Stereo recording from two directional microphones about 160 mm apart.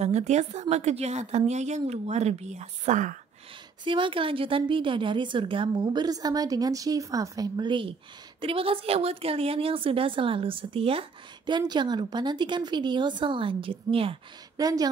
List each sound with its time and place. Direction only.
0.0 s a woman's voice: 45° right (ahead or behind)
3.8 s a woman's voice: 30° right (ahead or behind)
14.6 s a woman's voice: 25° right (ahead or behind)